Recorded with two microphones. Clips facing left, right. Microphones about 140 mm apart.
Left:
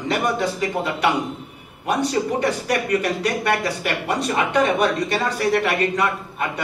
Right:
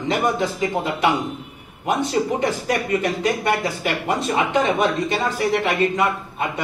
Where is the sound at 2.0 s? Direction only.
25° right (ahead or behind).